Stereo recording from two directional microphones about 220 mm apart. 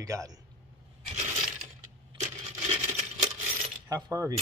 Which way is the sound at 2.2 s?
30° right (ahead or behind).